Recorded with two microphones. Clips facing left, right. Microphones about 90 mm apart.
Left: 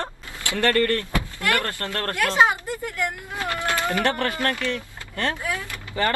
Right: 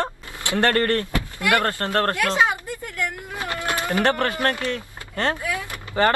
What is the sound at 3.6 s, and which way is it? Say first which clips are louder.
Speech: right 2 dB; 20° right (ahead or behind).